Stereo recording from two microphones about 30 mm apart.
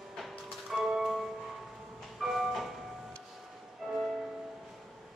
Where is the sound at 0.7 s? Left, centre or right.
Centre.